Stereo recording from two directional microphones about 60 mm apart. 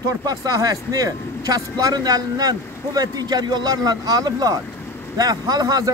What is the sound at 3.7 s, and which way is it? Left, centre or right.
Speech, right.